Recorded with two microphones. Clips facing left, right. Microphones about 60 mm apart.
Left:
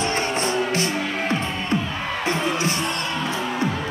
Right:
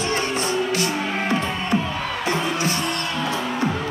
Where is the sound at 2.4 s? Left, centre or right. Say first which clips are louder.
Even; left.